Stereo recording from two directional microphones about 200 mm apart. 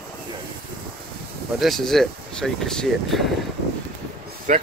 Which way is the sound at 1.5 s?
Centre (ahead or behind).